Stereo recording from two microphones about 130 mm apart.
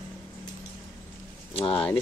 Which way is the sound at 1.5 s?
45° left (ahead or behind).